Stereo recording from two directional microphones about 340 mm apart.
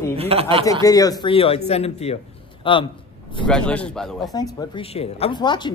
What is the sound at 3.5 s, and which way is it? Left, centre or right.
Speech, centre.